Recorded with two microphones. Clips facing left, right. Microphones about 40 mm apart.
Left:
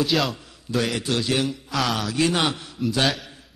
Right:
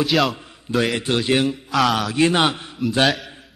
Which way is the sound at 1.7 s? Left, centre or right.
Centre.